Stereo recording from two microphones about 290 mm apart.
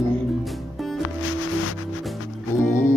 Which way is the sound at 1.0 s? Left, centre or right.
Left.